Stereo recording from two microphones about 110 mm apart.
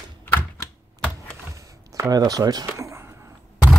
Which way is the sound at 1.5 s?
30° right (ahead or behind).